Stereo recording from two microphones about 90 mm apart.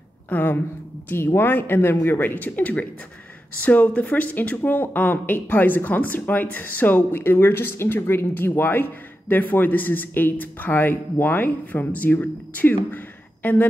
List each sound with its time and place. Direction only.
0.3 s speech: 20° left (ahead or behind)